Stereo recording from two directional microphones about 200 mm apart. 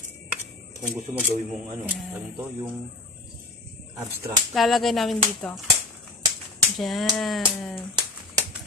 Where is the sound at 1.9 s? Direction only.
10° right (ahead or behind).